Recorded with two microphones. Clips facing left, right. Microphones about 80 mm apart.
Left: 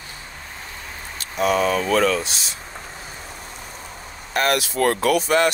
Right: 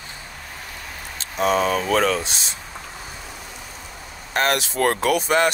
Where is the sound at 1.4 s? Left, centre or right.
Right.